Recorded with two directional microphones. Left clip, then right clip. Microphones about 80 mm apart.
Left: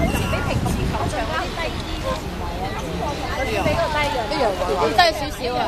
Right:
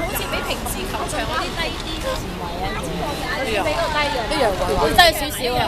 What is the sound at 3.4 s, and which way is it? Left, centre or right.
Speech, right.